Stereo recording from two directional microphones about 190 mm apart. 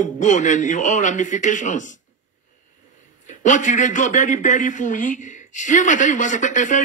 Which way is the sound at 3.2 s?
40° left (ahead or behind).